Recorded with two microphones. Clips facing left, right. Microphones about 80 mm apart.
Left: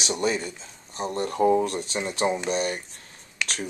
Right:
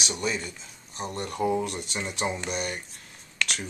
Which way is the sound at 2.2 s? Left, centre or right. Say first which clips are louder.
Left 6 dB; centre.